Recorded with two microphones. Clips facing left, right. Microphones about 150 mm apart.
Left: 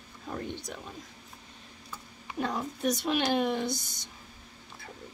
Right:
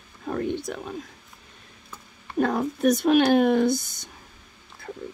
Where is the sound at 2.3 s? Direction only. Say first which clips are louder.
Right 9 dB; 55° right (ahead or behind).